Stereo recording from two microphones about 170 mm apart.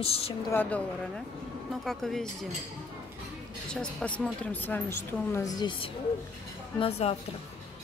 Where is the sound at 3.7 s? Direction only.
5° left (ahead or behind); by 7.1 s 35° left (ahead or behind).